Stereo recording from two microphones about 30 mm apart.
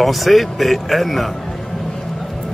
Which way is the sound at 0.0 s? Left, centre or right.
Centre.